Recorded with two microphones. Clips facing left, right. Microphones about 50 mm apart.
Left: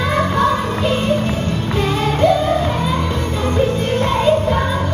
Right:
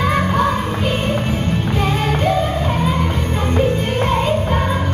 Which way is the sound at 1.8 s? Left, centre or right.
Right.